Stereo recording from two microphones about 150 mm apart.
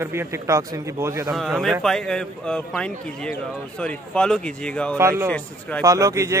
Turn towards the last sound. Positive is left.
turn(degrees=-20)  # may be behind; listen again after turning